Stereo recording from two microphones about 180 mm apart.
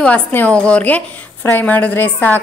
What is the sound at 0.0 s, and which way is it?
A woman's voice, 10° left (ahead or behind).